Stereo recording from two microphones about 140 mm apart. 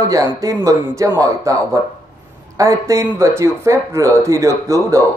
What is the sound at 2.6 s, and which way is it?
A man's voice, 20° right (ahead or behind).